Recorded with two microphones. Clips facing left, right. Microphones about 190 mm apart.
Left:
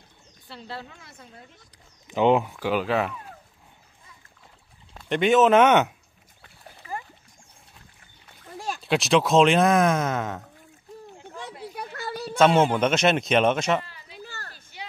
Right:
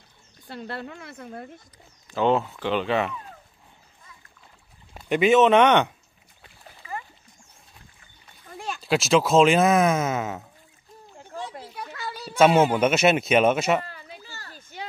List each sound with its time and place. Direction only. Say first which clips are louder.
0.5 s speech: right 4 dB; 55° right (ahead or behind)
2.0 s speech: left 2 dB; 15° left (ahead or behind)
5.0 s speech: right 1 dB; 5° right (ahead or behind)
6.8 s splash: left 1 dB; 50° left (ahead or behind)
8.8 s speech: right 1 dB; centre (ahead or behind)
11.7 s a sound: left 2 dB; 55° left (ahead or behind)
12.4 s a man's voice: right 1 dB; 10° right (ahead or behind)
13.8 s children playing: right 7 dB; 45° right (ahead or behind)
14.2 s a sound: left 4 dB; 55° left (ahead or behind)